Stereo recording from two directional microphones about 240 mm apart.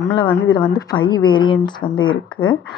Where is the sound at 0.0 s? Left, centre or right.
Centre.